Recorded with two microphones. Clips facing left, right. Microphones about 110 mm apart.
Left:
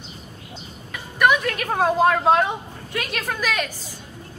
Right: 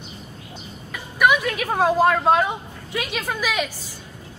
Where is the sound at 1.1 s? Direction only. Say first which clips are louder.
Even; 5° right (ahead or behind).